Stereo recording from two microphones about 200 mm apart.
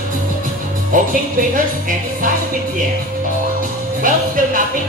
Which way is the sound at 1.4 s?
45° right (ahead or behind).